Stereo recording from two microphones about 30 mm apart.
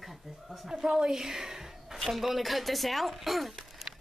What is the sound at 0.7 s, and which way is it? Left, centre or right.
A woman's voice, centre.